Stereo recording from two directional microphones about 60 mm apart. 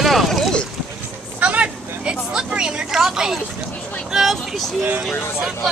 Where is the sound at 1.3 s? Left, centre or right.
Right; by 3.4 s centre.